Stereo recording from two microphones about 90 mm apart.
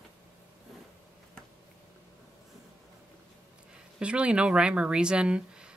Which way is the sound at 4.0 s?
15° right (ahead or behind).